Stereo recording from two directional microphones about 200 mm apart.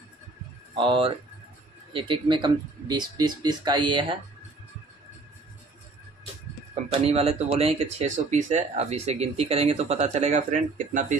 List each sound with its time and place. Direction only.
0.7 s speech: 25° right (ahead or behind)
6.7 s speech: 30° right (ahead or behind)